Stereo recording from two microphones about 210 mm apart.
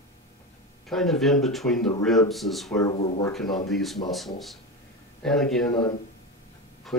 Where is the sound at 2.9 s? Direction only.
30° left (ahead or behind).